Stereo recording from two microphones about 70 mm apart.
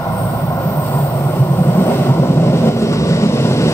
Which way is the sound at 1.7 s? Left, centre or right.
Left.